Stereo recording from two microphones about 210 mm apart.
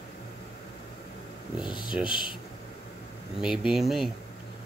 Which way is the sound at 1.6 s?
20° left (ahead or behind).